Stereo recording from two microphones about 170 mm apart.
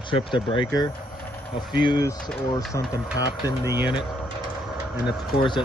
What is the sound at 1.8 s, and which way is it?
Speech, 25° left (ahead or behind).